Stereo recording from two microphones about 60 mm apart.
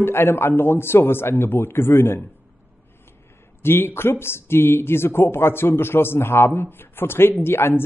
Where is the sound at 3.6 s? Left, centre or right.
Left.